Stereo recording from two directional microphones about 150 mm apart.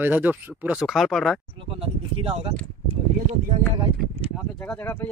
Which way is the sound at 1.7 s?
40° right (ahead or behind).